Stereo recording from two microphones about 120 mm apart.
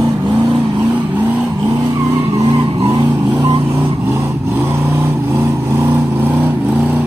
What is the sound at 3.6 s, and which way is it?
Vehicle, 15° right (ahead or behind).